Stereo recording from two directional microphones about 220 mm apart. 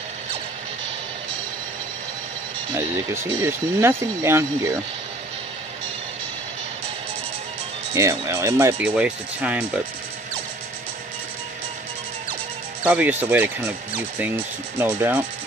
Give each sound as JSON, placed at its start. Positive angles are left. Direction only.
{"t": 2.7, "sound": "speech", "side_deg": -10}
{"t": 7.9, "sound": "speech", "side_deg": -15}
{"t": 12.8, "sound": "speech", "side_deg": -10}
{"t": 14.8, "sound": "speech", "side_deg": -10}